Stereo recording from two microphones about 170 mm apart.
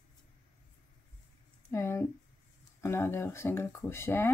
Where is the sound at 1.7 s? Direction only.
15° left (ahead or behind).